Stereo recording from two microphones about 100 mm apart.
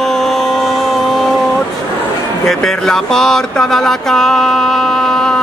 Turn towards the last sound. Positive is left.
turn(degrees=5)  # may be behind; listen again after turning